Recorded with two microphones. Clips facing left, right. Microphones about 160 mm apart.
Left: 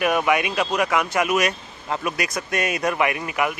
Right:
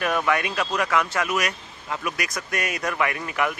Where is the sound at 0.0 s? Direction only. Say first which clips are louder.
Left 3 dB; 15° left (ahead or behind).